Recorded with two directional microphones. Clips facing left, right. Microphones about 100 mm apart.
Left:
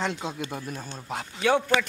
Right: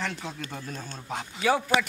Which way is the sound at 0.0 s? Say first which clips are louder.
Left 4 dB; 20° left (ahead or behind).